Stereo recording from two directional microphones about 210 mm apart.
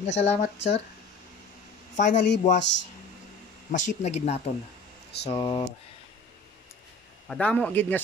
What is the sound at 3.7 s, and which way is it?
Speech, 35° left (ahead or behind).